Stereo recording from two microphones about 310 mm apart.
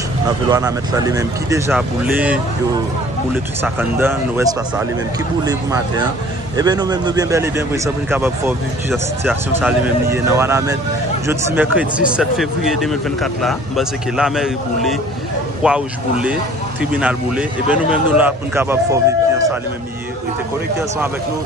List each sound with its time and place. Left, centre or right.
0.5 s speech: centre
3.6 s speech: centre